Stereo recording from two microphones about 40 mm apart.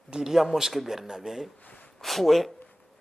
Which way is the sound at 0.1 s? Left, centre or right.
Centre.